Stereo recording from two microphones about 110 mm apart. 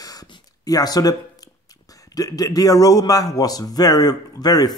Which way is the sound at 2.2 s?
35° left (ahead or behind).